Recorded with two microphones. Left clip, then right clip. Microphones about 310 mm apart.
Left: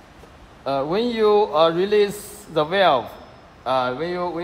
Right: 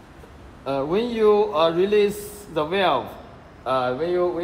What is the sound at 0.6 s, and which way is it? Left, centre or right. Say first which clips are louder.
A man's voice: left 2 dB; left.